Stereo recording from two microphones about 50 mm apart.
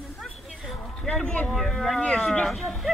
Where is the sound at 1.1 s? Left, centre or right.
Centre.